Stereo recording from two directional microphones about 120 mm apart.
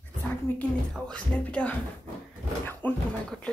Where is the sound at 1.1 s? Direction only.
10° left (ahead or behind).